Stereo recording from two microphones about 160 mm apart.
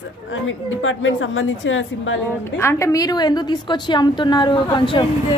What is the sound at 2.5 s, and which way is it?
A woman's voice, 15° left (ahead or behind).